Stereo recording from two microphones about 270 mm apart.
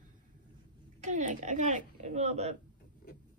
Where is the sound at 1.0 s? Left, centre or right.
Right.